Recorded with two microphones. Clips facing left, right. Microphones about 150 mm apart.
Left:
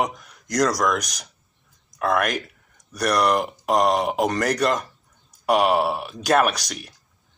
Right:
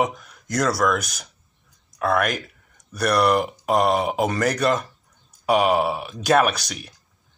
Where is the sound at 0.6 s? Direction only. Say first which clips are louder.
Left 1 dB; 15° left (ahead or behind).